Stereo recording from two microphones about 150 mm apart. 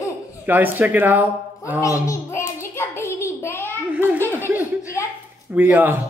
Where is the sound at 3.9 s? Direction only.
15° right (ahead or behind).